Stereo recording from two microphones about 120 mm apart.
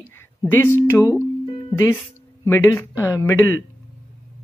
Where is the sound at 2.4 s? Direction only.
20° left (ahead or behind).